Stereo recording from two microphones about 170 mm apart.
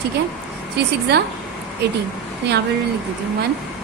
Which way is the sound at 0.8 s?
75° right (ahead or behind).